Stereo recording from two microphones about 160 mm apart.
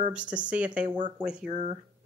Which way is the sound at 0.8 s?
50° right (ahead or behind).